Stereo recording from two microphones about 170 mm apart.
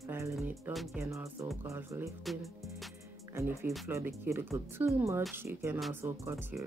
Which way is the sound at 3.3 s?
15° right (ahead or behind).